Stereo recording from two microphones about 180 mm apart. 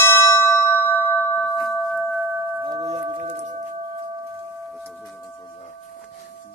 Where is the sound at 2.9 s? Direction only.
40° right (ahead or behind).